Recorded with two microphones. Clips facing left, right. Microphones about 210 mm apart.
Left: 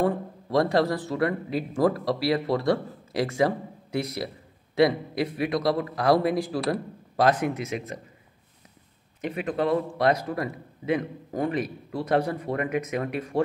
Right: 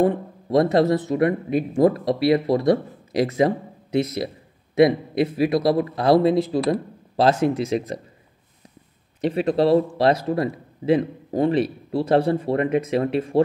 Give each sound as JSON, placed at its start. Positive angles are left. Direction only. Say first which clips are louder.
{"t": 0.0, "sound": "speech", "louder": "right 5 dB", "side_deg": -20}
{"t": 9.2, "sound": "speech", "louder": "right 7 dB", "side_deg": -30}